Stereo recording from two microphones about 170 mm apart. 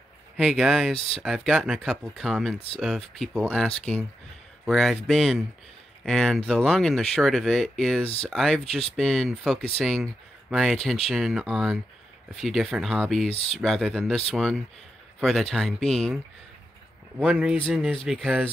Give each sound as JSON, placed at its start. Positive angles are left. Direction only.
{"t": 0.4, "sound": "speech", "side_deg": -5}
{"t": 8.0, "sound": "speech", "side_deg": 35}
{"t": 8.3, "sound": "speech", "side_deg": 0}
{"t": 13.3, "sound": "speech", "side_deg": 35}
{"t": 13.6, "sound": "speech", "side_deg": 0}
{"t": 17.2, "sound": "speech", "side_deg": -5}